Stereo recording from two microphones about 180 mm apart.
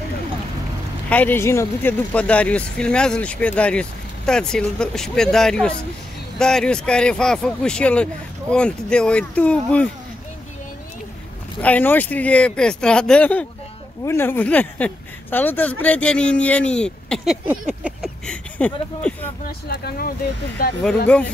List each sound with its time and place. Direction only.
1.1 s speech: 10° left (ahead or behind)
11.6 s speech: 10° left (ahead or behind)
18.2 s speech: 5° left (ahead or behind)
19.7 s speech: 60° left (ahead or behind)